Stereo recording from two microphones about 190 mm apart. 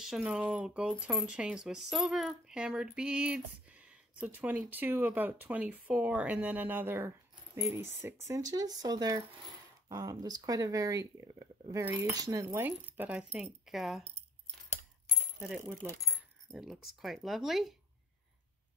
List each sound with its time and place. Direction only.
0.0 s speech: 5° right (ahead or behind)
15.4 s speech: 5° right (ahead or behind)